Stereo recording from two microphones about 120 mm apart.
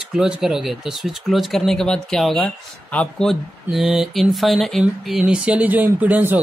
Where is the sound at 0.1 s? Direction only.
5° right (ahead or behind).